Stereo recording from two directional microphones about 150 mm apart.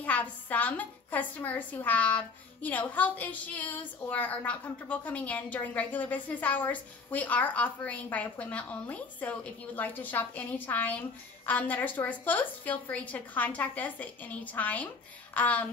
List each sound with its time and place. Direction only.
0.0 s speech: 10° left (ahead or behind)